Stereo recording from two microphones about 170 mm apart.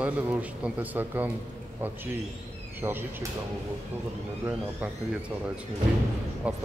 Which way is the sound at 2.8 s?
15° right (ahead or behind).